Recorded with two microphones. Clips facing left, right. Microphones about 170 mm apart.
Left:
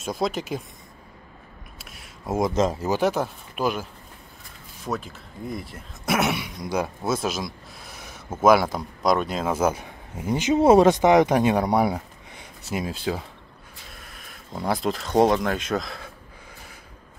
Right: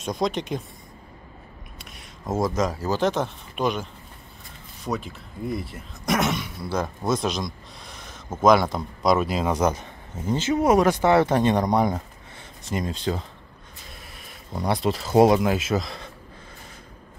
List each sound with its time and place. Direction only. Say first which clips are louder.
0.0 s speech: right 1 dB; 5° left (ahead or behind)
1.8 s a sound: right 1 dB; 5° left (ahead or behind)
2.3 s speech: left 2 dB; 20° left (ahead or behind)
3.1 s speech: even; 5° left (ahead or behind)
4.8 s speech: right 1 dB; centre (ahead or behind)
10.6 s speech: left 4 dB; 25° left (ahead or behind); by 16.1 s centre (ahead or behind)